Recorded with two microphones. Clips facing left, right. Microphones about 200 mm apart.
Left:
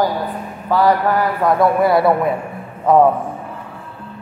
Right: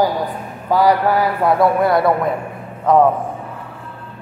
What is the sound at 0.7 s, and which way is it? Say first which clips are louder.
A man's voice: right 1 dB; 10° right (ahead or behind).